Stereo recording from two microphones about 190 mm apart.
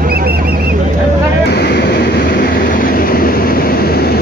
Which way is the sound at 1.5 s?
60° left (ahead or behind).